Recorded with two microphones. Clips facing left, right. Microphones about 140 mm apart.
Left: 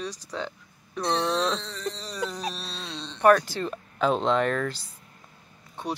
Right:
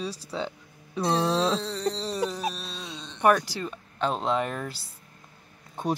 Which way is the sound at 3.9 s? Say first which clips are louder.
Left 3 dB; centre (ahead or behind).